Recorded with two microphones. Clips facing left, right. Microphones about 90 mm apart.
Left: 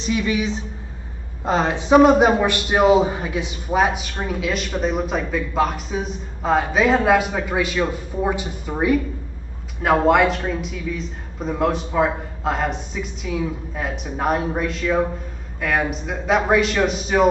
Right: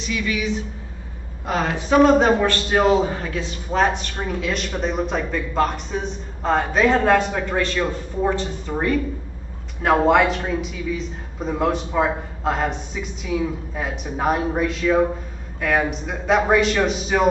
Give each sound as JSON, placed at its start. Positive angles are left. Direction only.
{"t": 0.0, "sound": "a woman's voice", "side_deg": 30}